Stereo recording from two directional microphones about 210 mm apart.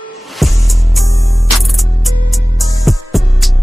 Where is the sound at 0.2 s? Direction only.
Centre (ahead or behind).